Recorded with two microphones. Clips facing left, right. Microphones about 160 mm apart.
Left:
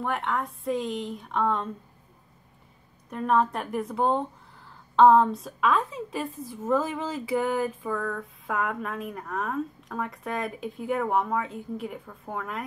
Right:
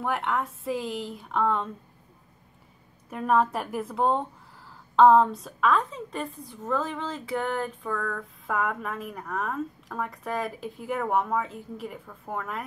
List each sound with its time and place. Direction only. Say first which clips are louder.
0.0 s a woman's voice: right 1 dB; 5° right (ahead or behind)
3.1 s a woman's voice: even; 5° right (ahead or behind)